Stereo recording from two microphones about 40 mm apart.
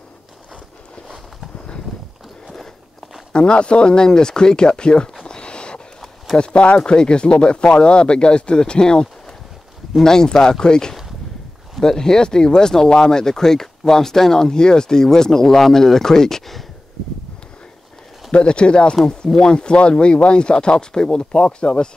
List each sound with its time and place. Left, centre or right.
2.4 s walk: centre
3.3 s speech: left
5.2 s a sound: left
6.3 s speech: left; by 16.6 s centre
18.3 s speech: left